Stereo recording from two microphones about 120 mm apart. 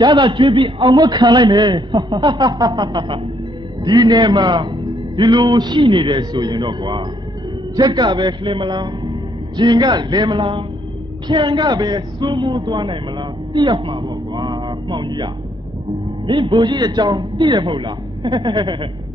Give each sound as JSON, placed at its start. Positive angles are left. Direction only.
{"t": 0.0, "sound": "a man's voice", "side_deg": -40}
{"t": 16.3, "sound": "a man's voice", "side_deg": -45}